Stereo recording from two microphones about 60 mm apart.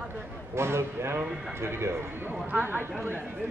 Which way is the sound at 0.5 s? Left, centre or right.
Right.